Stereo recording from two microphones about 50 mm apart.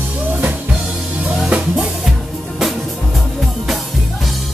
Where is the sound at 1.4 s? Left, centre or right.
Right.